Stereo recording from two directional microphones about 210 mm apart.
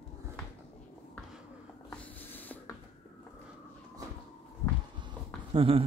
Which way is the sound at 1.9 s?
10° left (ahead or behind).